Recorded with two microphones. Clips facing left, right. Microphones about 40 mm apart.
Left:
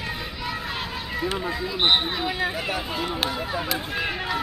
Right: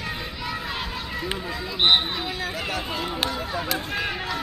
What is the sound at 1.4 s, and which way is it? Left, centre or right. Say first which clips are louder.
Speech: left 3 dB; centre.